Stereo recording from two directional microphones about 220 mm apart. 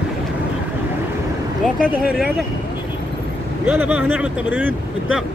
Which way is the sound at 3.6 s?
10° right (ahead or behind).